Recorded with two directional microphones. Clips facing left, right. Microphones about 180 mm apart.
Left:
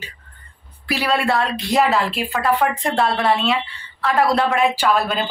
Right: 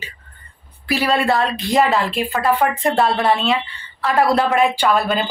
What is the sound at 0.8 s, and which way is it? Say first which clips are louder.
A woman's voice: right 2 dB; centre (ahead or behind).